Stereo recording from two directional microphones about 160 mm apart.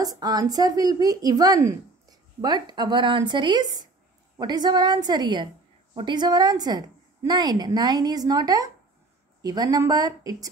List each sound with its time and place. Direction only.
0.0 s speech: 25° right (ahead or behind)